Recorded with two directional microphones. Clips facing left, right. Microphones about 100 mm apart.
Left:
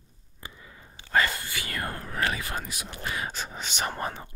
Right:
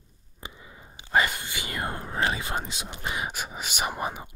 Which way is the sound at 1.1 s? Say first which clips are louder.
Right 1 dB; 20° right (ahead or behind).